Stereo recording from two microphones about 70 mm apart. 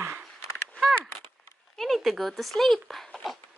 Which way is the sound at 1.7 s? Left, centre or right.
Centre.